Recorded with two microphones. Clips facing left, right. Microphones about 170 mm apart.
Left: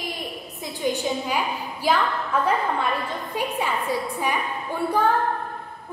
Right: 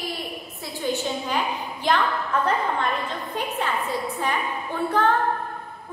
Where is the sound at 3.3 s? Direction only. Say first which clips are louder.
Left 2 dB; 10° left (ahead or behind).